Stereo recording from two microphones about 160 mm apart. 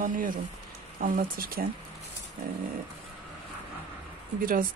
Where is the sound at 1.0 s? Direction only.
60° right (ahead or behind).